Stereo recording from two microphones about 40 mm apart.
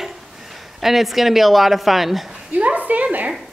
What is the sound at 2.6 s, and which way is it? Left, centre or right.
Speech, right.